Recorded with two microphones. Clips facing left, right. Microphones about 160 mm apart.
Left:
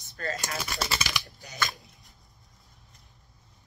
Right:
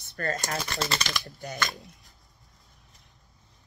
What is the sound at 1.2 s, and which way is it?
Speech, 45° right (ahead or behind).